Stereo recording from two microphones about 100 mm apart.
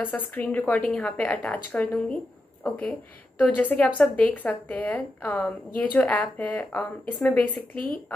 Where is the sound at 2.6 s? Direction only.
15° left (ahead or behind).